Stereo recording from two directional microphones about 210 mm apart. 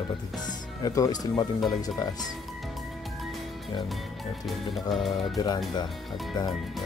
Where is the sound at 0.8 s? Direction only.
15° left (ahead or behind).